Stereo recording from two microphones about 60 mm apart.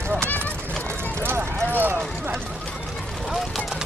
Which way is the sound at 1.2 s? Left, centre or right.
Right.